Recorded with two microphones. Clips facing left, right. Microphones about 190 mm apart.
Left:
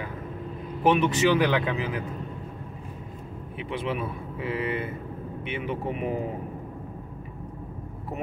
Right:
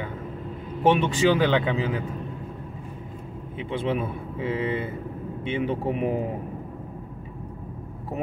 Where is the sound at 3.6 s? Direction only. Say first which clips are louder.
Right 3 dB; 25° right (ahead or behind).